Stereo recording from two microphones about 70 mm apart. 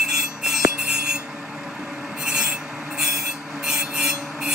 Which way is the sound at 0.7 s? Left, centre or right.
Centre.